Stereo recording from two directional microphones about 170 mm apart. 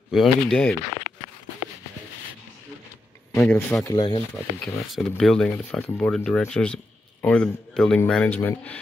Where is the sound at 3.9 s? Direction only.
30° left (ahead or behind).